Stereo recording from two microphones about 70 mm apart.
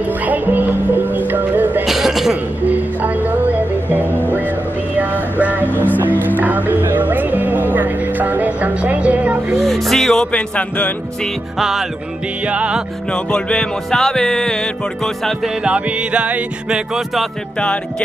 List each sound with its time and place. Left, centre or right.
0.3 s music: right
1.9 s cough: centre
2.6 s music: right
9.6 s music: centre
10.3 s music: centre
12.4 s music: centre
13.1 s music: centre
15.4 s music: centre